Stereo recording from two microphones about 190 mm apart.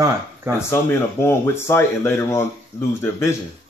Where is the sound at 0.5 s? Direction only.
15° left (ahead or behind).